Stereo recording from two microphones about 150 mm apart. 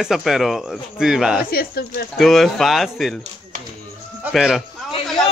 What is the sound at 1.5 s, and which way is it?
Speech, 90° left.